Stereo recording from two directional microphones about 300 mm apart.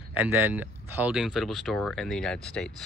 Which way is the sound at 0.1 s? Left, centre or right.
Centre.